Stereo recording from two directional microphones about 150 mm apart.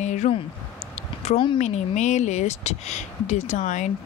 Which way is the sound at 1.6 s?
50° left (ahead or behind).